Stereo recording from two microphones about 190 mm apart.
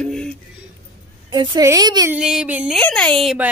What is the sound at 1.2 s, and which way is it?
Speech, 20° right (ahead or behind).